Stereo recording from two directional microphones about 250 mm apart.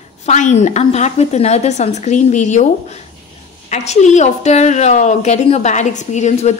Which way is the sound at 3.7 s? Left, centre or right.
Left.